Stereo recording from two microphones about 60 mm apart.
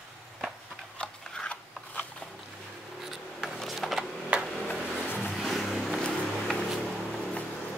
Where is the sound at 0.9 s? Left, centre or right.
Centre.